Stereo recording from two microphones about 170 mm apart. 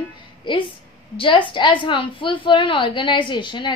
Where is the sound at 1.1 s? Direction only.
30° left (ahead or behind).